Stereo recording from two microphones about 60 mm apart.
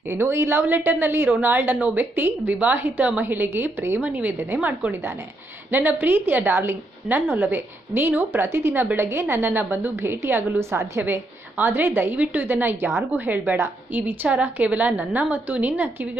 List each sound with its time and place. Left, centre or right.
0.1 s a woman's voice: right
4.0 s a woman's voice: right
5.7 s a woman's voice: right
9.5 s a woman's voice: right
11.1 s a woman's voice: right